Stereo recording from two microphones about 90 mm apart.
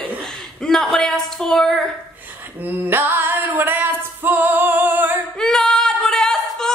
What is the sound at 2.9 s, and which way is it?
Music, 25° right (ahead or behind).